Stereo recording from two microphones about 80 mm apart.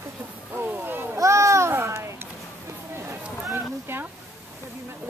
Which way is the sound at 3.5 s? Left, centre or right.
Right.